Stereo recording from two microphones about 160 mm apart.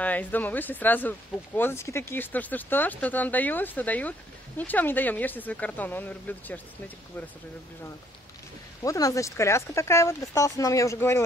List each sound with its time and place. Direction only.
0.0 s speech: 10° left (ahead or behind)
8.8 s speech: 20° left (ahead or behind)